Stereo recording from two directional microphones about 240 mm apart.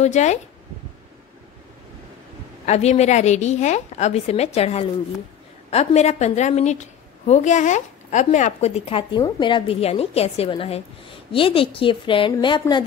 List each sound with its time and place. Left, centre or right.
0.0 s a woman's voice: left
2.6 s a woman's voice: left